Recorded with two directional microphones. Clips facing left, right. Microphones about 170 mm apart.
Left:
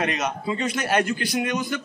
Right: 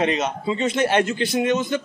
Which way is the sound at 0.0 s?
25° right (ahead or behind).